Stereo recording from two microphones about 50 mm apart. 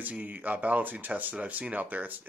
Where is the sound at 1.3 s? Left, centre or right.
Right.